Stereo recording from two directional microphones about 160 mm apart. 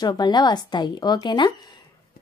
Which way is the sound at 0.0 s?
25° left (ahead or behind).